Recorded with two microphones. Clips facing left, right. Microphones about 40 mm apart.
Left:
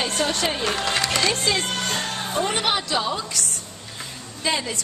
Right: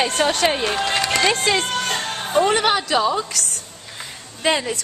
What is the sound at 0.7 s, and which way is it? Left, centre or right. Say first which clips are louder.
Speech: right 3 dB; centre.